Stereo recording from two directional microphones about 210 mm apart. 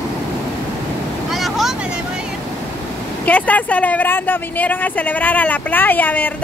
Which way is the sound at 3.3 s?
5° left (ahead or behind).